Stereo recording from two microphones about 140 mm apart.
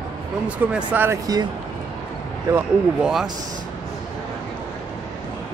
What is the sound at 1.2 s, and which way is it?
Speech, 30° right (ahead or behind).